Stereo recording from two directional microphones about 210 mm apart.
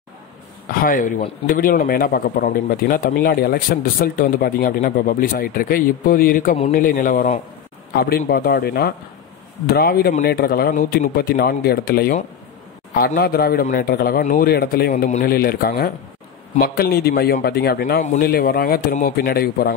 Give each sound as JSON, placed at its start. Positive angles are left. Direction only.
{"t": 0.7, "sound": "a man's voice", "side_deg": 40}